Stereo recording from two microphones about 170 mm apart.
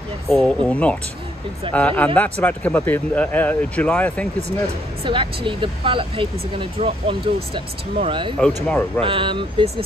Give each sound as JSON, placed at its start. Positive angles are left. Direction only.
{"t": 0.3, "sound": "speech", "side_deg": 5}
{"t": 5.0, "sound": "speech", "side_deg": -30}
{"t": 8.6, "sound": "speech", "side_deg": 10}
{"t": 9.0, "sound": "speech", "side_deg": -30}